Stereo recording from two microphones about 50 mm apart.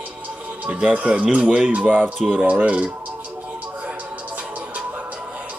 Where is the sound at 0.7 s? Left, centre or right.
Right.